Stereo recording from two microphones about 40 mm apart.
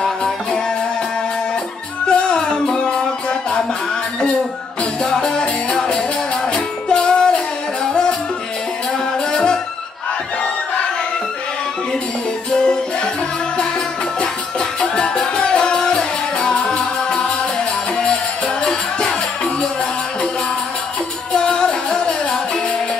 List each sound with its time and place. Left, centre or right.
0.0 s music: centre
2.0 s music: left
5.0 s music: centre
5.4 s music: left
6.5 s music: centre
9.3 s music: centre
12.4 s music: left
14.2 s music: centre
15.0 s music: left
21.3 s music: left